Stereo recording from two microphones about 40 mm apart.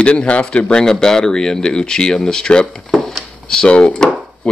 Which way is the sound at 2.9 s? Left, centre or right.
Centre.